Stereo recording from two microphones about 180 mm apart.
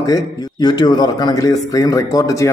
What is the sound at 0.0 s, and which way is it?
A man's voice, 20° left (ahead or behind).